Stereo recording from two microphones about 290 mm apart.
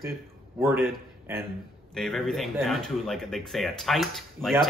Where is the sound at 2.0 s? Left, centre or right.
Centre.